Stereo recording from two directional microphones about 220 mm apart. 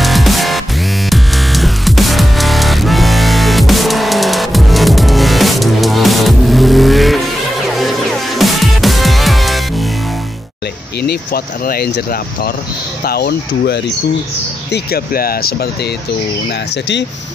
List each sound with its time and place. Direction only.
0.0 s music: centre (ahead or behind)
8.4 s music: centre (ahead or behind)
11.0 s speech: 45° left (ahead or behind)